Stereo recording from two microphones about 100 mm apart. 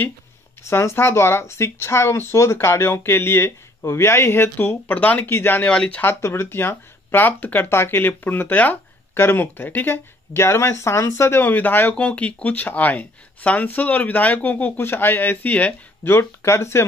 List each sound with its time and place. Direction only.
0.7 s speech: 25° left (ahead or behind)